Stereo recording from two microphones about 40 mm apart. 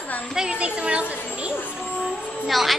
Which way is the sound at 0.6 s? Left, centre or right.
Right.